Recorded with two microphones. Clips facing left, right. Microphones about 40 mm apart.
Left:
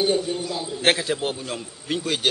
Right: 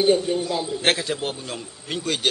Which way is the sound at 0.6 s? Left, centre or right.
Centre.